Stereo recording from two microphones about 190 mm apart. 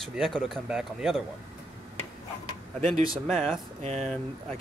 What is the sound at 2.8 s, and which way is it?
Speech, 40° right (ahead or behind).